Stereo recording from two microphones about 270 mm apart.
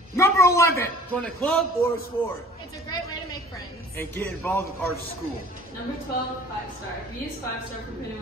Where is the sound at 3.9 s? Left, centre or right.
Centre.